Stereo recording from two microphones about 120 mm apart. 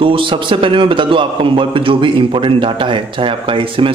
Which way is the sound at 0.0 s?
45° right (ahead or behind).